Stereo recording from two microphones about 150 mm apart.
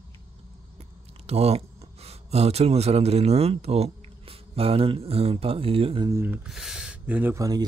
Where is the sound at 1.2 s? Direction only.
40° right (ahead or behind).